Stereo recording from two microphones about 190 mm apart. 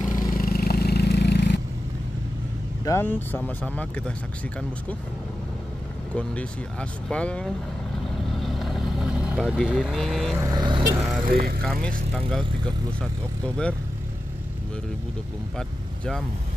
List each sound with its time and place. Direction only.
0.1 s vehicle: 50° left (ahead or behind)
2.8 s speech: 15° left (ahead or behind)
6.1 s speech: 5° left (ahead or behind)
8.4 s vehicle: centre (ahead or behind)
9.3 s speech: 5° right (ahead or behind)
10.3 s vehicle: 20° right (ahead or behind)
11.0 s speech: centre (ahead or behind)
11.2 s speech: 50° right (ahead or behind)
11.6 s speech: 5° left (ahead or behind)